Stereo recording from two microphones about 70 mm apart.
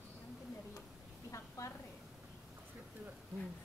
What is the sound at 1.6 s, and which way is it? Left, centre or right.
Speech, left.